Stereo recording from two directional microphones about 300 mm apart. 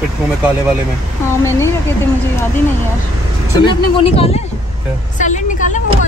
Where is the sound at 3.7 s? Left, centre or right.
Centre.